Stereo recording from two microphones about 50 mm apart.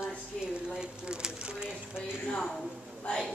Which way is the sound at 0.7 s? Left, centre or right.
Centre.